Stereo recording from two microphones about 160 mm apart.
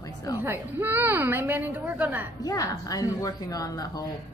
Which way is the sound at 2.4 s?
20° left (ahead or behind).